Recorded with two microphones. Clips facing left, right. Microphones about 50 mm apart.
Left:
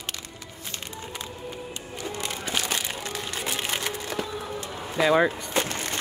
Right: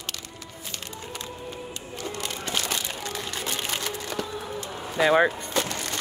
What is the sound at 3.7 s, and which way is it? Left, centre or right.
Music, centre.